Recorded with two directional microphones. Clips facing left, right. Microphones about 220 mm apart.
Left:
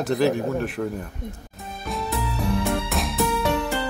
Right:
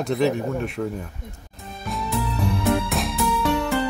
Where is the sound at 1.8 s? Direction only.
Centre (ahead or behind).